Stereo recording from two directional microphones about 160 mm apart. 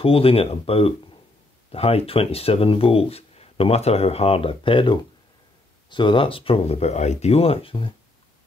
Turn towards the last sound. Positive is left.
turn(degrees=35)  # may be behind; listen again after turning